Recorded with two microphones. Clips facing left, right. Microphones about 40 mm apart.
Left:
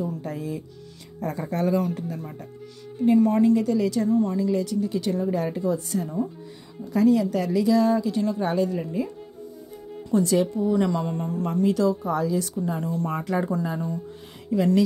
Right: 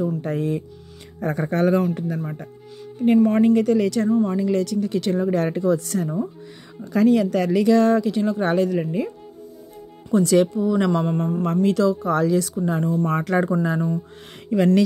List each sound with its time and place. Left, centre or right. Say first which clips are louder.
0.0 s speech: right 6 dB; right
5.3 s speech: right 5 dB; right
8.1 s speech: right 3 dB; right
8.5 s speech: right 4 dB; right
10.1 s speech: right 4 dB; right
11.1 s speech: right 5 dB; right
11.4 s speech: right 2 dB; right
12.4 s speech: right 5 dB; right
13.0 s speech: right 5 dB; right
14.5 s speech: right 4 dB; right